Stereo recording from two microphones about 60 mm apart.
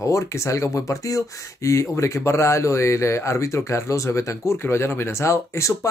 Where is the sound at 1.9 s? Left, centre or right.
Left.